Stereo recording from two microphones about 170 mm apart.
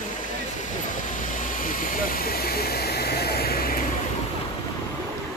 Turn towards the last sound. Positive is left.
turn(degrees=60)  # may be behind; listen again after turning